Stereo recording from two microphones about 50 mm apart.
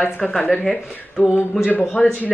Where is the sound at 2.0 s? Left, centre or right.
Left.